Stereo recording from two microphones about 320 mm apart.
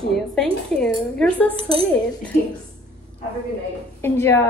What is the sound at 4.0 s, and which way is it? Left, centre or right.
Speech, centre.